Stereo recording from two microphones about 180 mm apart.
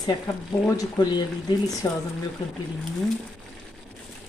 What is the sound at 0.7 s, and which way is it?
Speech, 20° left (ahead or behind).